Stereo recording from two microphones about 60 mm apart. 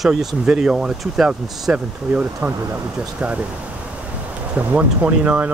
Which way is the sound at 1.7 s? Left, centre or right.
Right.